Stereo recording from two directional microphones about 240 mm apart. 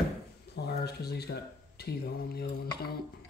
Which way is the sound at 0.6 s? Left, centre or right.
Left.